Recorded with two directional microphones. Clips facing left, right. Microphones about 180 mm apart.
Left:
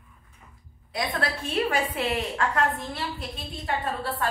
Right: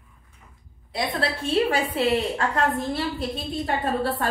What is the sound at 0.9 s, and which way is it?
A woman's voice, 30° right (ahead or behind).